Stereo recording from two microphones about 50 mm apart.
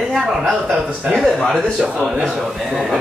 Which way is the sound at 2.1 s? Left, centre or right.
Centre.